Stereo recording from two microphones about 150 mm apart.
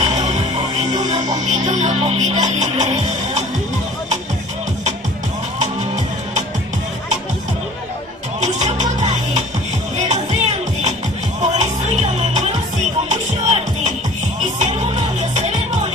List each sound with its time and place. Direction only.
0.0 s music: 50° right (ahead or behind)
1.4 s music: 50° right (ahead or behind)
8.4 s music: 50° right (ahead or behind)